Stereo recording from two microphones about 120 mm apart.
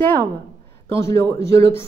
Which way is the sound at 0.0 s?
15° left (ahead or behind).